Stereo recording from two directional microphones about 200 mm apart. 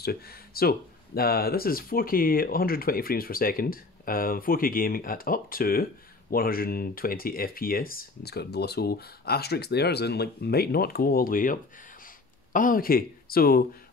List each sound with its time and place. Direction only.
0.0 s speech: 50° left (ahead or behind)
12.5 s speech: 45° left (ahead or behind)